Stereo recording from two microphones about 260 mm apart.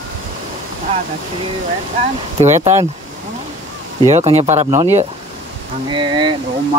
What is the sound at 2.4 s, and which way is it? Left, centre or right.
Speech, right.